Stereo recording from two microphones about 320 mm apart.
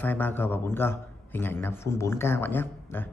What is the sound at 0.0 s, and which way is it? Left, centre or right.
A man's voice, centre.